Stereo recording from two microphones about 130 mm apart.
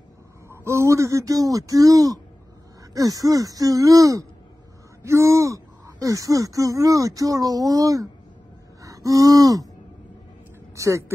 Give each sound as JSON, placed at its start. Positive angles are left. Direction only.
{"t": 0.5, "sound": "speech", "side_deg": -20}
{"t": 8.8, "sound": "gasp", "side_deg": -25}
{"t": 10.8, "sound": "speech", "side_deg": -25}